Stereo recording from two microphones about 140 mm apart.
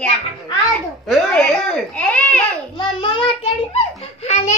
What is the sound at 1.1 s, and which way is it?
A child's voice, 5° left (ahead or behind).